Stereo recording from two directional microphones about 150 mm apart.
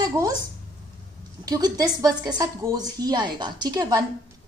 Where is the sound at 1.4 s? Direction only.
25° right (ahead or behind).